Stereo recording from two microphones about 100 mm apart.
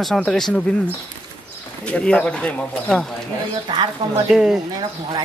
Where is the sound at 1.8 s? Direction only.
10° left (ahead or behind).